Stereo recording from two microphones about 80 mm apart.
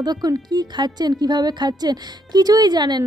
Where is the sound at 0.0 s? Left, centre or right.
Right.